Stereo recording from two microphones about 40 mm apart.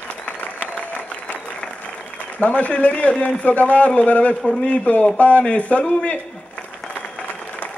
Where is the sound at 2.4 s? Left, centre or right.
Left.